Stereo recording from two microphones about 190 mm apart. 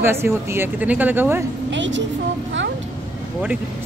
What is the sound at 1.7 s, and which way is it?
Speech, 75° right (ahead or behind).